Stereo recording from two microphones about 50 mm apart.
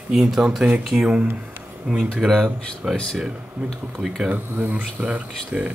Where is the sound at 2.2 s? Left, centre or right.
Centre.